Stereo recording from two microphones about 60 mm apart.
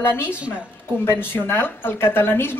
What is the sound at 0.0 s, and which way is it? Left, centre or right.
A woman's voice, left.